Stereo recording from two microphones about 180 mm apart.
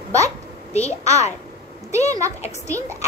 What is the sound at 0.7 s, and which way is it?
Speech, 35° left (ahead or behind).